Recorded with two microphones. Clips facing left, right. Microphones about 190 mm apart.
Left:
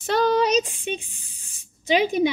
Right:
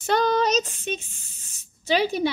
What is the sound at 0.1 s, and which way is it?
Spray, 5° left (ahead or behind).